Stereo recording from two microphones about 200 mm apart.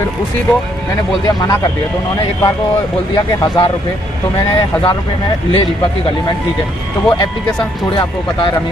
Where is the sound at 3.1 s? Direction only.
20° left (ahead or behind).